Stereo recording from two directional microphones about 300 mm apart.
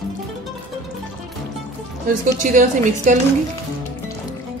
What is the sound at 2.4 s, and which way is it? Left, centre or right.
Speech, right.